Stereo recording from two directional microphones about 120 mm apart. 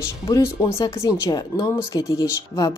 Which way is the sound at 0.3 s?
25° left (ahead or behind).